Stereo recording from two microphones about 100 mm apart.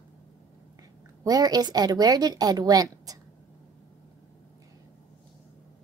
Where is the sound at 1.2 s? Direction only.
40° right (ahead or behind).